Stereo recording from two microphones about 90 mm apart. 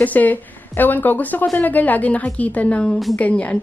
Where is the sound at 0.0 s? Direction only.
20° left (ahead or behind).